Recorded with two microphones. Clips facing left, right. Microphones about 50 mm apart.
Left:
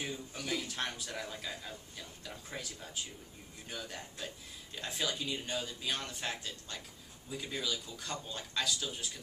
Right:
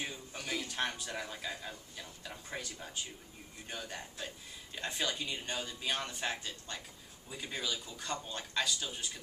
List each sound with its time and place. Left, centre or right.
0.0 s speech: centre
3.8 s speech: centre